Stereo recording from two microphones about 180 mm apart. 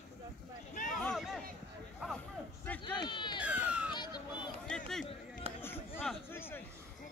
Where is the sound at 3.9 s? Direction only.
25° left (ahead or behind).